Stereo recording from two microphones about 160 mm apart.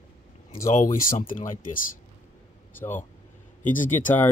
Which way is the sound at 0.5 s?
60° left (ahead or behind).